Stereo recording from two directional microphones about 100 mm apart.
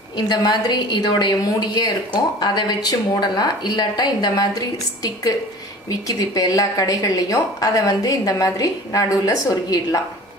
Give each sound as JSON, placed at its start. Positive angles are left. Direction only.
{"t": 0.3, "sound": "a woman's voice", "side_deg": 45}